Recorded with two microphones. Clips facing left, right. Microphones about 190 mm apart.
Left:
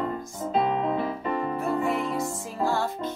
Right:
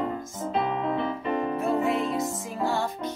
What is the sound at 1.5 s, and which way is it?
Music, 20° right (ahead or behind).